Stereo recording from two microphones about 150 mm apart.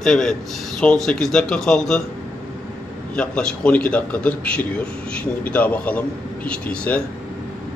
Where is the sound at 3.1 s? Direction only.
5° left (ahead or behind).